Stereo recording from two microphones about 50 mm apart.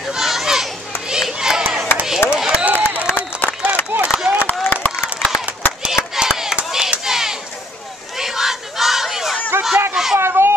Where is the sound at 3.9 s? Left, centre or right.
Right.